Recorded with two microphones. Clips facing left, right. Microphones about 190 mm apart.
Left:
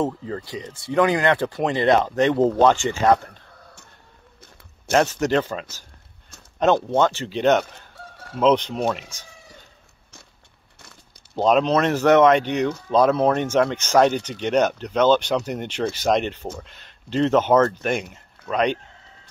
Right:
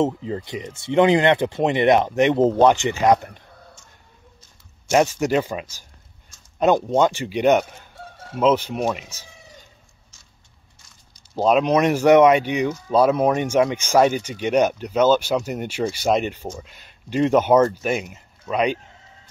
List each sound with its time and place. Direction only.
0.0 s speech: 20° right (ahead or behind)
4.9 s speech: 10° right (ahead or behind)
11.3 s speech: 5° right (ahead or behind)